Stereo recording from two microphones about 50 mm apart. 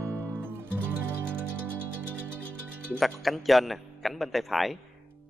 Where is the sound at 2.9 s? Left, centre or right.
Centre.